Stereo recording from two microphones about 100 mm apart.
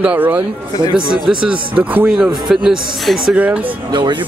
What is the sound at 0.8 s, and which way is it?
Speech, 50° right (ahead or behind).